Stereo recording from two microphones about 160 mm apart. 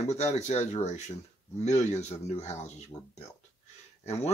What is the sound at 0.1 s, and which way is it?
Speech, 45° left (ahead or behind).